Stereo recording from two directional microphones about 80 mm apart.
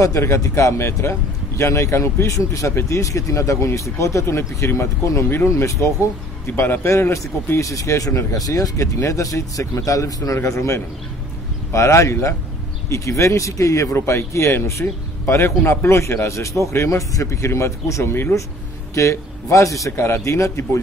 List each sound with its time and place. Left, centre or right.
0.0 s speech: left
6.4 s speech: left